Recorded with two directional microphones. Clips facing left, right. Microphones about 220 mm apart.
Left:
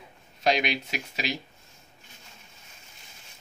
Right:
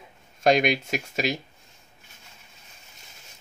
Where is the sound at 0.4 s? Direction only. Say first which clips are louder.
Right 5 dB; 50° right (ahead or behind).